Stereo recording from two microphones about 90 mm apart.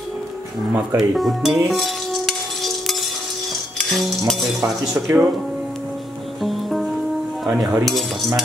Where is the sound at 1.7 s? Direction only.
Centre (ahead or behind).